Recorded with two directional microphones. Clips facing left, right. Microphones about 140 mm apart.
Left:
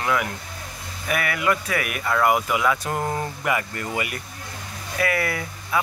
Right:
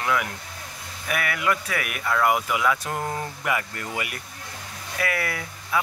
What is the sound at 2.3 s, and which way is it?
Speech, 45° left (ahead or behind).